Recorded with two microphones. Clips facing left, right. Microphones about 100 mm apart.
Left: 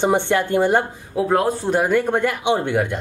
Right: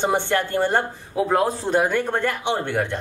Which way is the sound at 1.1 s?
Centre (ahead or behind).